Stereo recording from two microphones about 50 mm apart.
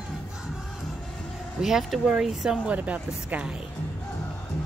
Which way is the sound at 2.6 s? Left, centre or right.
Right.